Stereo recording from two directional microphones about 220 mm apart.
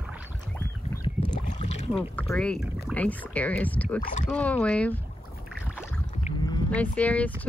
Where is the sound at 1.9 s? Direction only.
5° left (ahead or behind).